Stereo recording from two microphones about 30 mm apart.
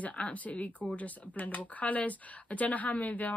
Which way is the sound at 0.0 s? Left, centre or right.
Left.